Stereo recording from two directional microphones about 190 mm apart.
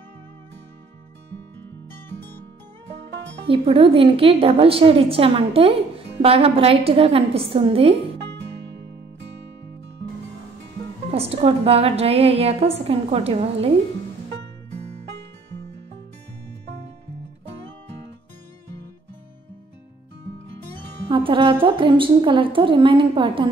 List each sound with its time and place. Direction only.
3.4 s a woman's voice: 30° right (ahead or behind)
11.1 s a woman's voice: 30° right (ahead or behind)
21.1 s a woman's voice: 25° right (ahead or behind)